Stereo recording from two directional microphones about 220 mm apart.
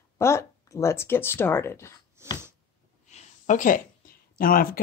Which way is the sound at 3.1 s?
35° left (ahead or behind).